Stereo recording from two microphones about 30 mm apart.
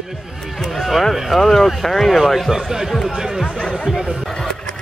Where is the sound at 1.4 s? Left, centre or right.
Centre.